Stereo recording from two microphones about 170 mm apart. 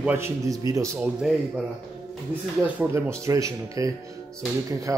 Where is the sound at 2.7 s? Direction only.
15° right (ahead or behind).